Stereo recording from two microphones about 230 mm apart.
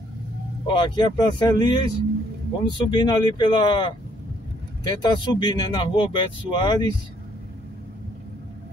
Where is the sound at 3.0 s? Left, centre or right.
Centre.